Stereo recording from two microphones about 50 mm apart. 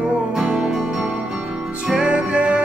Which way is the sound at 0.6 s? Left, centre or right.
Centre.